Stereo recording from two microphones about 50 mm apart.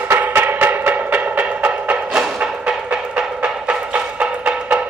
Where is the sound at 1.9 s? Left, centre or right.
Centre.